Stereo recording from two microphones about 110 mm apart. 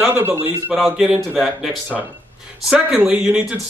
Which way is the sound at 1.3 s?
Centre (ahead or behind).